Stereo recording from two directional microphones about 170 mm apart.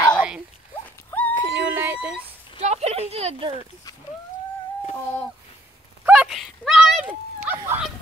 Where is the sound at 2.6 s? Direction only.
40° right (ahead or behind).